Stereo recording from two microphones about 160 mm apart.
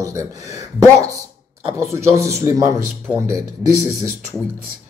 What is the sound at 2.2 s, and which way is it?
Speech, 20° right (ahead or behind).